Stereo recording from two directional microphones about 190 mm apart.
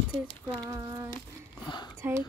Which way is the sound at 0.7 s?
15° right (ahead or behind).